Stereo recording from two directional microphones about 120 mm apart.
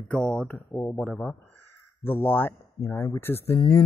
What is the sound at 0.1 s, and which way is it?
Speech, 5° left (ahead or behind).